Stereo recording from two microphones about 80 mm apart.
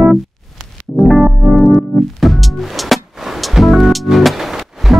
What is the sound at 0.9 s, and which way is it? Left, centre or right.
Music, centre.